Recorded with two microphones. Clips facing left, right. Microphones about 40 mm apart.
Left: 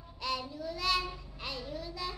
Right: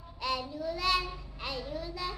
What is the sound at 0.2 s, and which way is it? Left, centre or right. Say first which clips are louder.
Child singing: right 3 dB; centre.